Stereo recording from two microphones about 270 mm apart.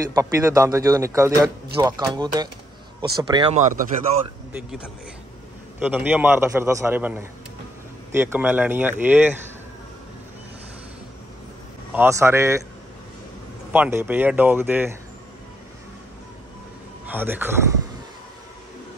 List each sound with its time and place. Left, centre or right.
0.1 s a man's voice: centre
4.5 s a man's voice: centre
11.9 s a man's voice: centre
13.7 s a man's voice: centre
17.0 s speech: centre